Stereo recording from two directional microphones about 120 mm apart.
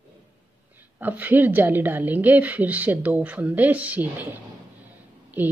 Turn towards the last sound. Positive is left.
turn(degrees=-15)  # may be behind; listen again after turning